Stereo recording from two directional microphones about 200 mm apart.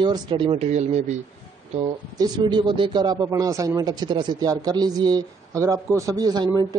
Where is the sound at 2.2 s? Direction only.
20° right (ahead or behind).